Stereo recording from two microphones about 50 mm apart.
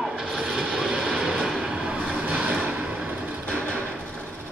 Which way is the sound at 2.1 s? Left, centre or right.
Right.